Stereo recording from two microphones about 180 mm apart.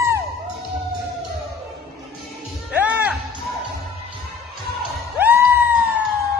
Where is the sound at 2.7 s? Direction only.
10° right (ahead or behind).